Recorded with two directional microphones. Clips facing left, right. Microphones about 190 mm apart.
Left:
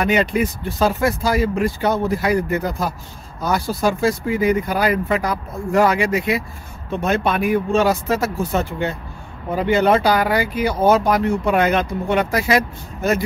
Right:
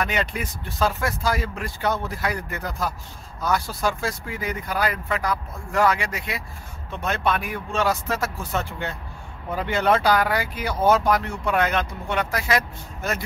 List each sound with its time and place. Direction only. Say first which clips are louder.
0.0 s speech: left 8 dB; 10° left (ahead or behind)